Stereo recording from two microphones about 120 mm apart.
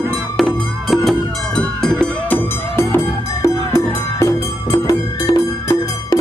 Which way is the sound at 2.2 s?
15° left (ahead or behind).